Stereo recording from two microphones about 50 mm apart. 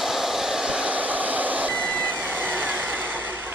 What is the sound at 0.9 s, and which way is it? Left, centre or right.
Vehicle, right.